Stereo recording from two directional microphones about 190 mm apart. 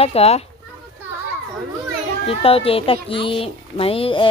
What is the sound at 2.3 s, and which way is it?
A woman's voice, 30° left (ahead or behind).